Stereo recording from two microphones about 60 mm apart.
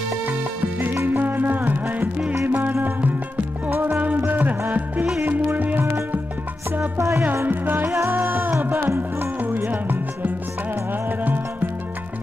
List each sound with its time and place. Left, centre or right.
0.3 s music: right
3.7 s music: right
7.0 s music: right
7.4 s music: right
7.9 s music: right